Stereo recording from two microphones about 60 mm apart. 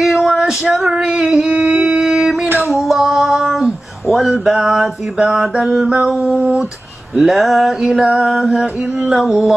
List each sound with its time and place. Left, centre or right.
0.0 s female singing: centre
1.5 s a sound: centre
2.7 s female singing: centre
7.2 s music: centre